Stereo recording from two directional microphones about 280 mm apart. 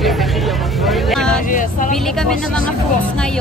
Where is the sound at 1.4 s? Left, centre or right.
Left.